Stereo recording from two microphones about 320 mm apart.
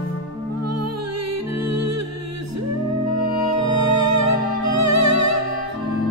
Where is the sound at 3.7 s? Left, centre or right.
Right.